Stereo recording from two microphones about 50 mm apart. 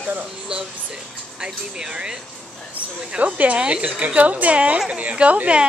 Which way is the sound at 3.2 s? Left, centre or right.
Right.